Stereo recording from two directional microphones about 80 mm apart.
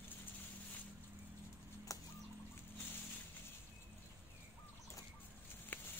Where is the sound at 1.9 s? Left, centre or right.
Left.